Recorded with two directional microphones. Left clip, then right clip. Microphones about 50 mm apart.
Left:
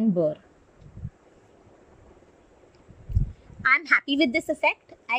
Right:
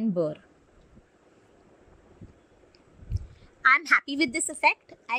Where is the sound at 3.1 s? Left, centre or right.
Right.